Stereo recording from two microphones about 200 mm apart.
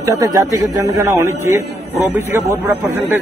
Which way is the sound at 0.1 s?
15° right (ahead or behind).